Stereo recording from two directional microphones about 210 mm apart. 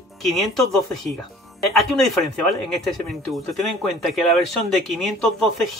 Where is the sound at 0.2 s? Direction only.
Centre (ahead or behind).